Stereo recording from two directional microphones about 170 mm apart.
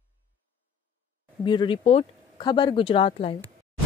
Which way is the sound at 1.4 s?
25° left (ahead or behind).